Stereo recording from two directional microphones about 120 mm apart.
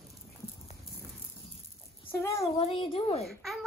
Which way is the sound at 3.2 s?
Centre (ahead or behind).